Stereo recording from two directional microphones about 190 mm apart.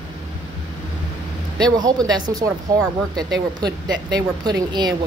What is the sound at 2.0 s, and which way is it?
A woman's voice, 20° right (ahead or behind).